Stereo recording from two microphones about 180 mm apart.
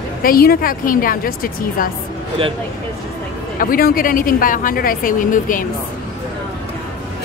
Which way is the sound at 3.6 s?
55° left (ahead or behind).